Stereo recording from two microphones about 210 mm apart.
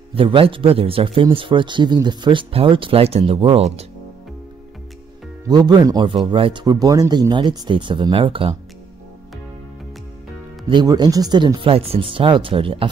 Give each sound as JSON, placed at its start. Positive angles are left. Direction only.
{"t": 0.1, "sound": "a man's voice", "side_deg": -25}
{"t": 5.5, "sound": "a man's voice", "side_deg": -20}
{"t": 10.7, "sound": "a man's voice", "side_deg": -20}